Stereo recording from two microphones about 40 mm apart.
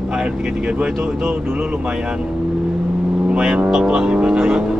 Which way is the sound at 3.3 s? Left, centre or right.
Right.